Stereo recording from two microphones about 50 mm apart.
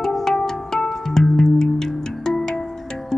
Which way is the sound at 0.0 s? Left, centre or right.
Centre.